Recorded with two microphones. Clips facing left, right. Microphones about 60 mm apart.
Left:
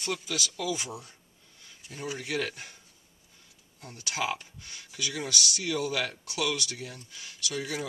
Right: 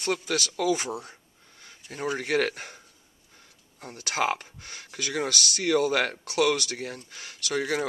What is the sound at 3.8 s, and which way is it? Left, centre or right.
Speech, right.